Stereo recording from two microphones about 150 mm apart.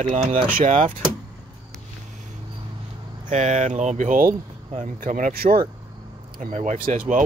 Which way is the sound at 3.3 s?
50° right (ahead or behind).